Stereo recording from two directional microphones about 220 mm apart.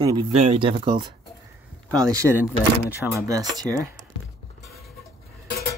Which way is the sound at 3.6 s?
15° right (ahead or behind).